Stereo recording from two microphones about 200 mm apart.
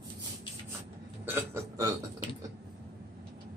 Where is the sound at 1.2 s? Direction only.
10° right (ahead or behind).